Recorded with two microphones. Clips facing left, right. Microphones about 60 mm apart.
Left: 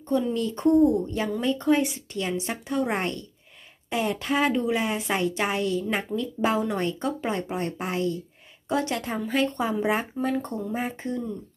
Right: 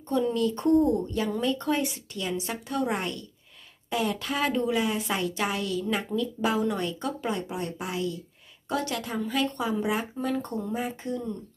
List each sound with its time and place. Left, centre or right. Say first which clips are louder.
0.3 s a woman's voice: left 1 dB; left
3.0 s a woman's voice: left 3 dB; left
8.6 s speech: left 3 dB; left